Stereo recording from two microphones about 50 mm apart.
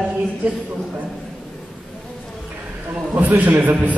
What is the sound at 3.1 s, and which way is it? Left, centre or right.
Speech, right.